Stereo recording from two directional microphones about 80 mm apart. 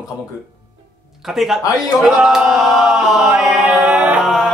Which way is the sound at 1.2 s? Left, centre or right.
Centre.